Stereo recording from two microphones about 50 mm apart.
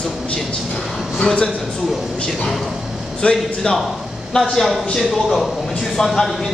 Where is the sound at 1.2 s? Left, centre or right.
Centre.